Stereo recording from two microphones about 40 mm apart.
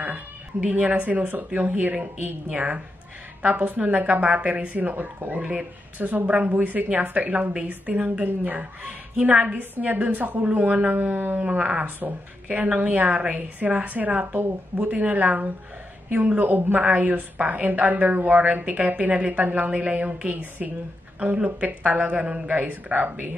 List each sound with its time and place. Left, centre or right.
0.7 s a woman's voice: right
2.5 s a woman's voice: right
3.4 s a woman's voice: right
5.4 s a woman's voice: right
9.2 s a woman's voice: right
9.6 s a woman's voice: right
11.0 s speech: right
11.4 s speech: right
12.0 s speech: right
12.4 s a woman's voice: right
16.3 s a woman's voice: right
16.8 s a woman's voice: right
21.5 s a woman's voice: right
22.5 s a woman's voice: right